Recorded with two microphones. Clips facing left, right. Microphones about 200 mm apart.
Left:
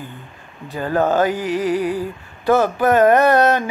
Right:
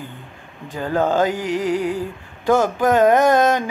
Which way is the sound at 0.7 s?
15° right (ahead or behind).